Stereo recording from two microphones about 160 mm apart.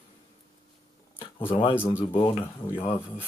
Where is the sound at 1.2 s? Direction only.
35° left (ahead or behind).